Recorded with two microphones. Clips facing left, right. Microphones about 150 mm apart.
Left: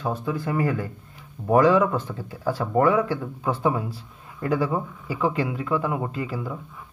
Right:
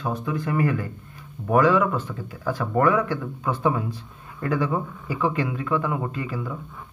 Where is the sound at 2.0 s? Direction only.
35° left (ahead or behind).